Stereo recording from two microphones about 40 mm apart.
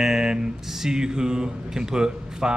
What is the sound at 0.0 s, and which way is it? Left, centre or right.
Speech, centre.